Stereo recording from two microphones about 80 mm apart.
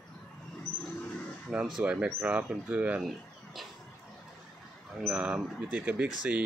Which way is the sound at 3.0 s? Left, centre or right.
Centre.